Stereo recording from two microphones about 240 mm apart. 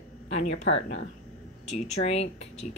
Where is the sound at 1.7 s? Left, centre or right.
Left.